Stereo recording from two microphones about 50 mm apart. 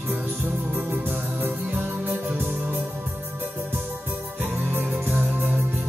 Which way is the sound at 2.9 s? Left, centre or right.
Right.